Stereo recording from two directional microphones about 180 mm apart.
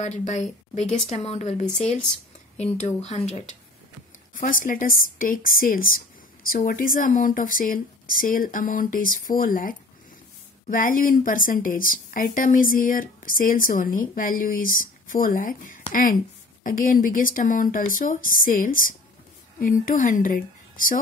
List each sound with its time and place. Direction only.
0.0 s a woman's voice: 40° left (ahead or behind)
2.8 s a woman's voice: 40° left (ahead or behind)
4.3 s a woman's voice: 50° left (ahead or behind)